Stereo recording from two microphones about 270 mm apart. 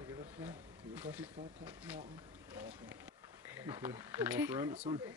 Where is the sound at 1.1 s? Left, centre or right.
Centre.